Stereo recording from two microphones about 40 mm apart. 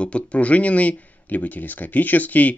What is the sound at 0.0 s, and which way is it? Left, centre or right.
Speech, left.